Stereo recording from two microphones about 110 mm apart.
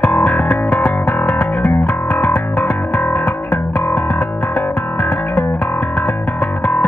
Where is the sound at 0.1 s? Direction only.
5° left (ahead or behind).